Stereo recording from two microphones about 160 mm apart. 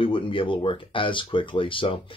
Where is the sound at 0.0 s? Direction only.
35° left (ahead or behind).